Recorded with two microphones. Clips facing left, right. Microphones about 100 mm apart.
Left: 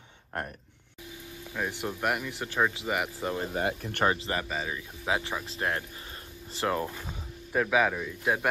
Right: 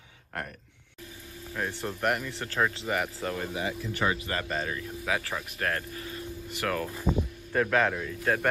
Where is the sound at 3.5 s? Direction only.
50° left (ahead or behind).